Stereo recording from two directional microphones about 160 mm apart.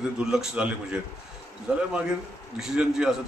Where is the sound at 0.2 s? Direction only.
5° right (ahead or behind).